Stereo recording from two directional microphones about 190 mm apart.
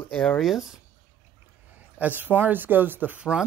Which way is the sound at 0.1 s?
5° left (ahead or behind).